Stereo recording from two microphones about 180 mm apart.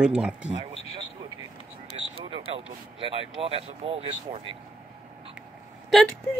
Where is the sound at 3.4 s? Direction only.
30° right (ahead or behind).